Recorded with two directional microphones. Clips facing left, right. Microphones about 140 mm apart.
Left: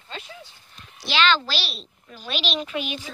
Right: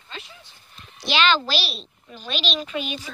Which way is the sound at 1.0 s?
15° right (ahead or behind).